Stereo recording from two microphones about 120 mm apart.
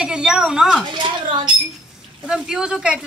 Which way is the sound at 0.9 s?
40° right (ahead or behind).